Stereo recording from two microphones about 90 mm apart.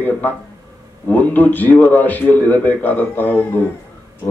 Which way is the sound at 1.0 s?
20° left (ahead or behind).